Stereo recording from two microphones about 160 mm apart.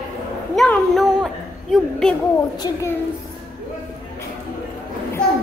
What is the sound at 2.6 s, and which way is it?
Speech, 20° left (ahead or behind).